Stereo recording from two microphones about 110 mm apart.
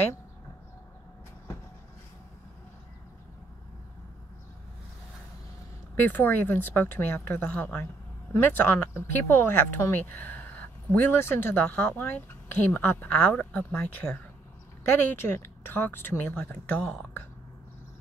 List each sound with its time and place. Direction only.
5.9 s speech: 15° left (ahead or behind)